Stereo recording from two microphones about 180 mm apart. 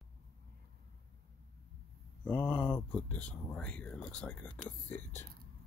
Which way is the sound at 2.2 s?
10° left (ahead or behind).